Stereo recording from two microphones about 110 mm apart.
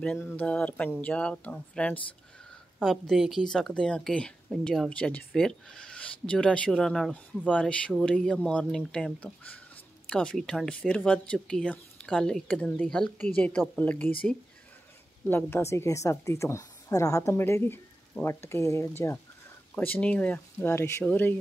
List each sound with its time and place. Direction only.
0.0 s a woman's voice: 15° left (ahead or behind)
2.8 s a woman's voice: centre (ahead or behind)
15.2 s a woman's voice: 20° left (ahead or behind)
19.7 s a woman's voice: 15° left (ahead or behind)